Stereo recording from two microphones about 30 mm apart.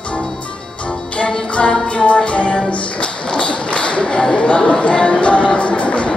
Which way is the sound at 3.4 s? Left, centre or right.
Left.